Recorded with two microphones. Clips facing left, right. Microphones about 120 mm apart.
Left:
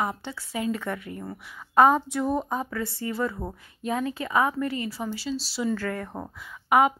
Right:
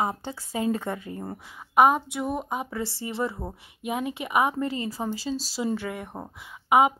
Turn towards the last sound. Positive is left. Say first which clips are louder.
# right 1 dB
turn(degrees=-20)  # may be behind; listen again after turning